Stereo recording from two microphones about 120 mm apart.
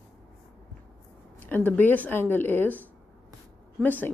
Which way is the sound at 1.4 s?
15° left (ahead or behind).